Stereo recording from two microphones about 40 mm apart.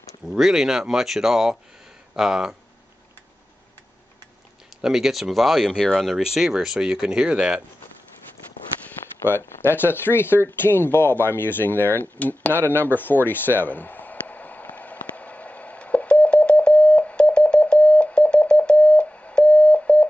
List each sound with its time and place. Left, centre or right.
0.4 s speech: centre
4.8 s speech: centre; by 7.6 s right
9.2 s speech: left
12.2 s speech: left
12.8 s a sound: left